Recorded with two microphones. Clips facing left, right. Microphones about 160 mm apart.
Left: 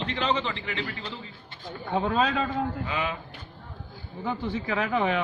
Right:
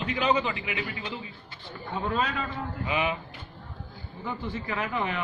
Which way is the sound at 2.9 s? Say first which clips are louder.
Right 2 dB; 15° right (ahead or behind).